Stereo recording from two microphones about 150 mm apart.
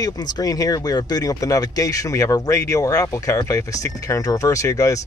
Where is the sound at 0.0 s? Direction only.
25° left (ahead or behind).